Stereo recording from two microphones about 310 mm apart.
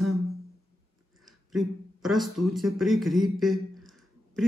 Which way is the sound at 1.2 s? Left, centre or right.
Centre.